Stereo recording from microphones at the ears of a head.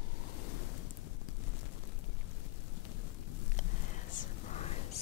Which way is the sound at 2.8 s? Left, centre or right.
Left.